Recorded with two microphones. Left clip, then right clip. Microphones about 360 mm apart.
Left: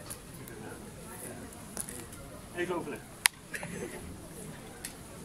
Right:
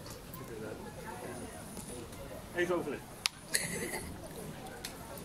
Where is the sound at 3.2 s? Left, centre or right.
Centre.